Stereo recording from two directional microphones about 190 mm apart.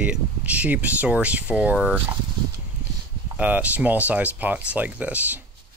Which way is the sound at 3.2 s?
10° right (ahead or behind).